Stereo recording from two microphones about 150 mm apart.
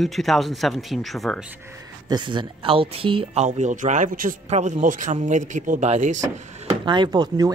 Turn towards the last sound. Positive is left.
turn(degrees=-30)  # may be behind; listen again after turning